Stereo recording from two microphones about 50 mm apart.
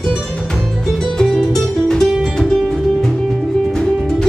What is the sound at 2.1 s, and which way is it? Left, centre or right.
Music, centre.